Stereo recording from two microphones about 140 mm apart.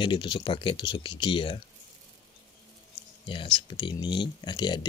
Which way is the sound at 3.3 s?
35° left (ahead or behind).